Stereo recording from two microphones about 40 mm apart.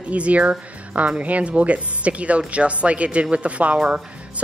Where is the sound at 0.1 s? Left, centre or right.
Right.